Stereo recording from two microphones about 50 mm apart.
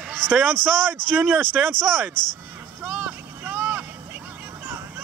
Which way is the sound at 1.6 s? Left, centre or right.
Centre.